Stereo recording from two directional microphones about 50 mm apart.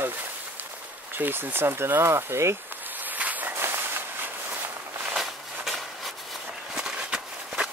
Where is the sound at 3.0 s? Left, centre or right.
Right.